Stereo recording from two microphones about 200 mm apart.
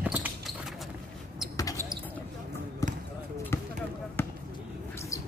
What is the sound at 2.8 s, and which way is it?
Basketball bounce, 15° left (ahead or behind).